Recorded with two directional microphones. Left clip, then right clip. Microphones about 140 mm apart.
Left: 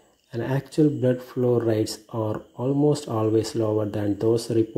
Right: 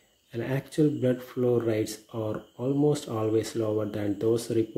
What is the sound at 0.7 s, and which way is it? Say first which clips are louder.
Speech: left 4 dB; 20° left (ahead or behind).